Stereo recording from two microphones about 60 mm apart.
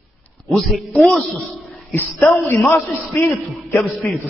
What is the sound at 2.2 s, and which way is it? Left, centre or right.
A man's voice, left.